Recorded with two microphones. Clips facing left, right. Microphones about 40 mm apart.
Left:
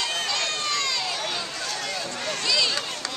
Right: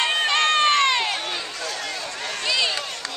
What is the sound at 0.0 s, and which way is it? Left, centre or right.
Run, right.